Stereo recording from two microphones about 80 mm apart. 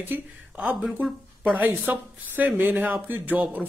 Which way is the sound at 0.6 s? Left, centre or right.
Centre.